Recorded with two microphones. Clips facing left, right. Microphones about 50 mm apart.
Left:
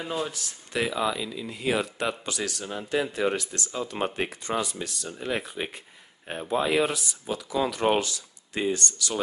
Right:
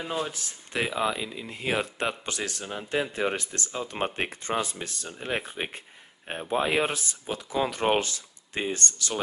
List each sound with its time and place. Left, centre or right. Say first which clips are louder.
0.0 s speech: even; centre
0.3 s speech: left 1 dB; right